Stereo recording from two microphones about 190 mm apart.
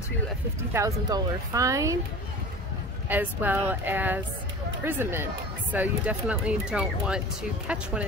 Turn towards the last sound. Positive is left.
turn(degrees=-5)  # may be behind; listen again after turning